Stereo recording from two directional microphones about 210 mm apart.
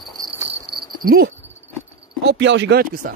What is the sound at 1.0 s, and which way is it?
Speech, 50° right (ahead or behind).